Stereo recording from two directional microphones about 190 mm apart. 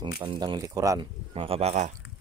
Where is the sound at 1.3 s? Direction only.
30° right (ahead or behind).